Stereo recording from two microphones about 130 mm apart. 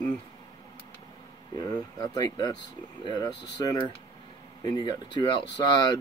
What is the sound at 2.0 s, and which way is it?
Speech, 30° left (ahead or behind).